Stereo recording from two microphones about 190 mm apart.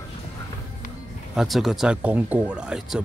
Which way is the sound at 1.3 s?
Centre (ahead or behind).